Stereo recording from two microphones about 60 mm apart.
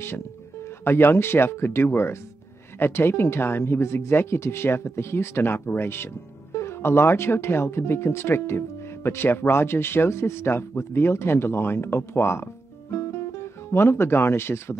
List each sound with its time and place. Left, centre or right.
0.7 s speech: left
12.9 s music: left